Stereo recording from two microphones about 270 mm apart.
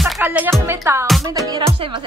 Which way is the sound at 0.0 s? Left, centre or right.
Centre.